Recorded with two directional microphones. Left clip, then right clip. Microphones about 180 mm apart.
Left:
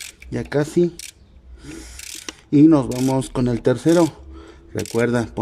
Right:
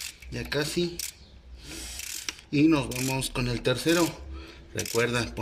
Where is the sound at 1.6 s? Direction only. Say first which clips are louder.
Left 3 dB; 45° left (ahead or behind).